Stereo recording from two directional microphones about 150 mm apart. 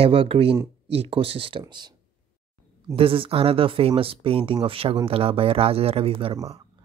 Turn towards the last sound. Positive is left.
turn(degrees=-35)  # may be behind; listen again after turning